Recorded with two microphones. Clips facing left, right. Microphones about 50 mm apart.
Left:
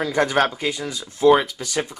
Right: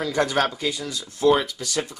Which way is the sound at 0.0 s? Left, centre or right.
Left.